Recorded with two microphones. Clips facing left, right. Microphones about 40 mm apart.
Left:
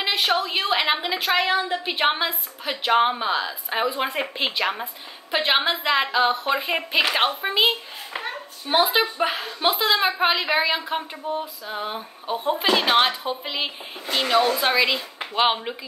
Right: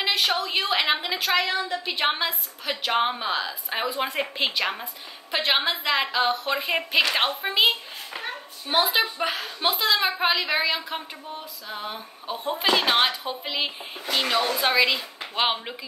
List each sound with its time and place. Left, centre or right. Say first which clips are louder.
0.0 s a sound: left 2 dB; centre
0.5 s a woman's voice: left 1 dB; centre
1.4 s a woman's voice: left 4 dB; left
1.9 s a woman's voice: left 2 dB; centre
8.2 s hands: left 3 dB; centre
8.8 s a woman's voice: left 3 dB; centre